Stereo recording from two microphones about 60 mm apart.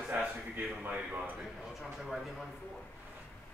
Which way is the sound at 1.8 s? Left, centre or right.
Centre.